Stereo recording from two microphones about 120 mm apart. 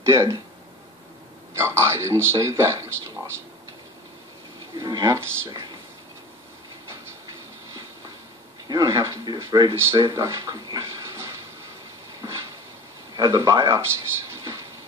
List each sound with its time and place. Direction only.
0.0 s a man's voice: 25° right (ahead or behind)
1.5 s a man's voice: 25° right (ahead or behind)
4.7 s a man's voice: 30° right (ahead or behind)
8.6 s speech: 30° right (ahead or behind)
9.8 s a man's voice: 20° right (ahead or behind)
13.1 s a man's voice: 30° right (ahead or behind)
14.3 s train: 25° right (ahead or behind)